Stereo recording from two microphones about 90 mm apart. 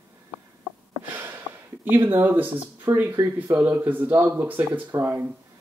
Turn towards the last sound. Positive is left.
turn(degrees=-20)  # may be behind; listen again after turning